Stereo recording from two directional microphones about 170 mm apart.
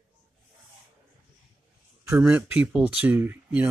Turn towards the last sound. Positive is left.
turn(degrees=-10)  # may be behind; listen again after turning